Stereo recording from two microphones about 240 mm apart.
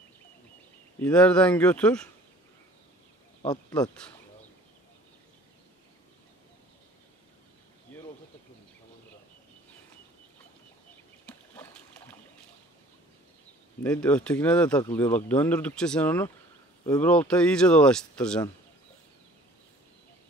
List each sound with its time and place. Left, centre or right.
1.0 s speech: centre
3.4 s speech: centre
11.2 s a sound: centre
13.8 s speech: centre